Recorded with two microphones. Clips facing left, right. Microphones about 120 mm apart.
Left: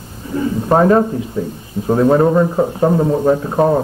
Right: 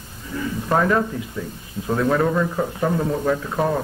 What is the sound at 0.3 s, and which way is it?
Speech, 30° left (ahead or behind).